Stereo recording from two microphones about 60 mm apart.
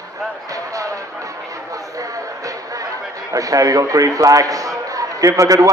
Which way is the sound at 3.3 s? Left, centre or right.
Right.